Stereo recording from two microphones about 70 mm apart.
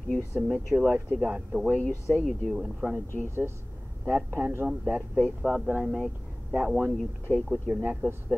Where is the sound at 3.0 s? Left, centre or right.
Left.